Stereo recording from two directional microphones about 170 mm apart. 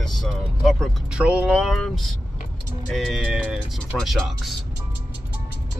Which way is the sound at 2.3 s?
50° left (ahead or behind).